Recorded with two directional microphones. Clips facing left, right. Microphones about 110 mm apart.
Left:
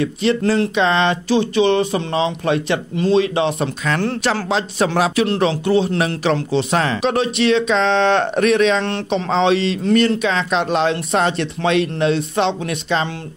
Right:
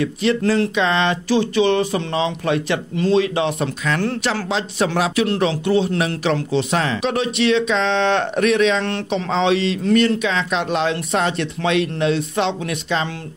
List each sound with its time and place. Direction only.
0.0 s speech: 30° left (ahead or behind)
3.8 s speech: 40° left (ahead or behind)